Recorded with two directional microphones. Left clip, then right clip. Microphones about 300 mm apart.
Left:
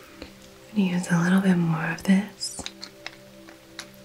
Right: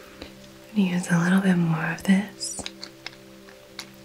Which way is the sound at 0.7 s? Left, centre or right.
Right.